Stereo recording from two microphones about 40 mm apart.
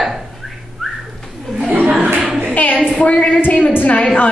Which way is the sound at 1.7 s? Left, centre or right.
Right.